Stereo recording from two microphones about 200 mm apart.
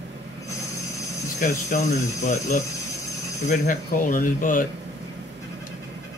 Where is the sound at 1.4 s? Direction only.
35° left (ahead or behind).